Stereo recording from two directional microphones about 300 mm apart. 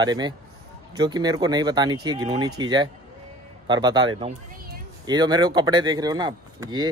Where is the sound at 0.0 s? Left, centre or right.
Centre.